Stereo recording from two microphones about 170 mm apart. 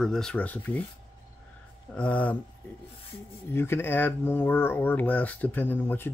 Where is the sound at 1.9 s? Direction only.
10° left (ahead or behind).